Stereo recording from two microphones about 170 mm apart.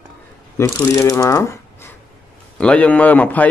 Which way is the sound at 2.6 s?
5° left (ahead or behind).